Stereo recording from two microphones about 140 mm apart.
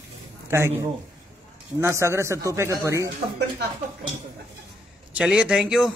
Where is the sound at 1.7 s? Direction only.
20° right (ahead or behind).